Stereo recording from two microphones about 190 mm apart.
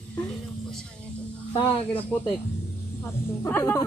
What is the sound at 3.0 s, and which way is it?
Speech, 15° left (ahead or behind).